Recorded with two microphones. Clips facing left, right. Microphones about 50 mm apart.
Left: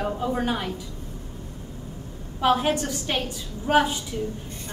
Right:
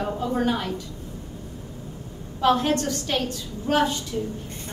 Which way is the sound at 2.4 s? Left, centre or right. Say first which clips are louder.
Right 1 dB; centre.